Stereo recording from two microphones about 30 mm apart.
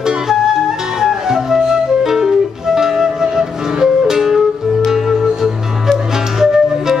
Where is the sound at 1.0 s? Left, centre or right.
Centre.